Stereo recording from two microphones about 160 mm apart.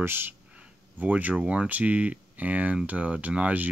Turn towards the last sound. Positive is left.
turn(degrees=-10)  # may be behind; listen again after turning